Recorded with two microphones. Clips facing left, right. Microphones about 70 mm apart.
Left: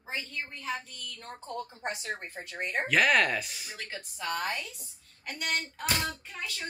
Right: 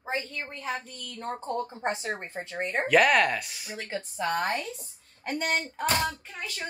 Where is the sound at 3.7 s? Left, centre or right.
Right.